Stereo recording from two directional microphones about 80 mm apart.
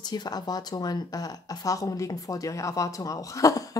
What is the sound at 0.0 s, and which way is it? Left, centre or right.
Speech, left.